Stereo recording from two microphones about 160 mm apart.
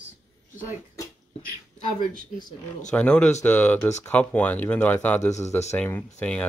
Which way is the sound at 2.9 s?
5° left (ahead or behind).